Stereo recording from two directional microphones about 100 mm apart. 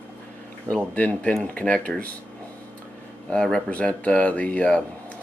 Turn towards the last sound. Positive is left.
turn(degrees=15)  # may be behind; listen again after turning